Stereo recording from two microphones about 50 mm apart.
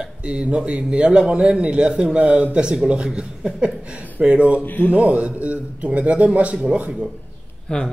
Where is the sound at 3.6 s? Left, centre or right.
Right.